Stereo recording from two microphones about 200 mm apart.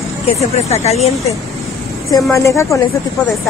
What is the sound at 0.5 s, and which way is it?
Speech, 30° left (ahead or behind).